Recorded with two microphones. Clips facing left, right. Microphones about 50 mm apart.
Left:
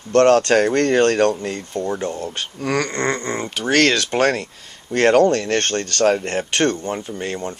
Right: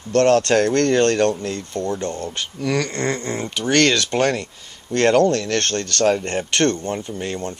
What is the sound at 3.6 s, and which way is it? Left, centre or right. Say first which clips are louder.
Speech: left 1 dB; centre.